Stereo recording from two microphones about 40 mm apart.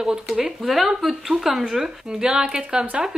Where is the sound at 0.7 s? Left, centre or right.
Centre.